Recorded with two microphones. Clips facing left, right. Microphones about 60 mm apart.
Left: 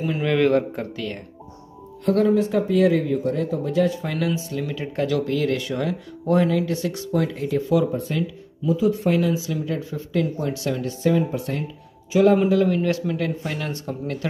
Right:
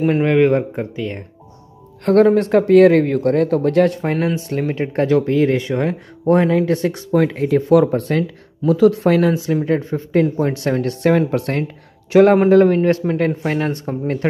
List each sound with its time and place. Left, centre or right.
0.4 s speech: right
2.0 s speech: right
4.0 s speech: right
7.2 s speech: right